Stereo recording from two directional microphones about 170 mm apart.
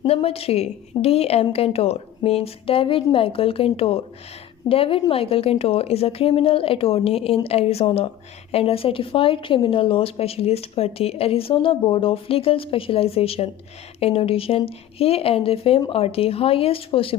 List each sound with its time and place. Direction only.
0.0 s speech: 35° left (ahead or behind)